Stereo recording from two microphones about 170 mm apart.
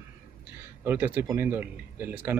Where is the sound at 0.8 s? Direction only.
10° right (ahead or behind).